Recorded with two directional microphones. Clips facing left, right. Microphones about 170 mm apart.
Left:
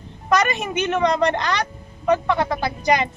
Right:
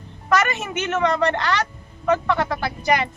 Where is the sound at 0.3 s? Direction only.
15° left (ahead or behind).